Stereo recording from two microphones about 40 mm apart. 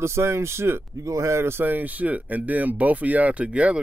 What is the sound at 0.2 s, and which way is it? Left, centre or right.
Speech, right.